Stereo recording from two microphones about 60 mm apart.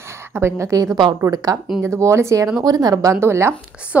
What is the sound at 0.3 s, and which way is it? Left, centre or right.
Speech, right.